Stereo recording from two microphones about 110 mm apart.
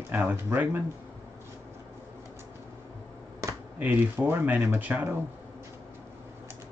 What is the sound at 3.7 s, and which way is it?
Speech, 15° right (ahead or behind).